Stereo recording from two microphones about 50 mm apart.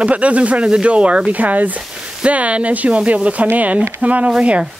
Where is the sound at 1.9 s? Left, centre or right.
Centre.